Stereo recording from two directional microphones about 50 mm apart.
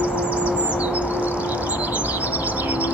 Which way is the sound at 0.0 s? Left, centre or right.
Right.